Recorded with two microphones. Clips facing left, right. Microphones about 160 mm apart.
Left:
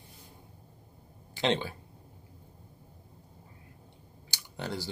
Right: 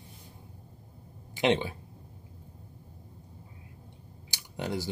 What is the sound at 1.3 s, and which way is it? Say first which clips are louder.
Speech: right 3 dB; 20° right (ahead or behind).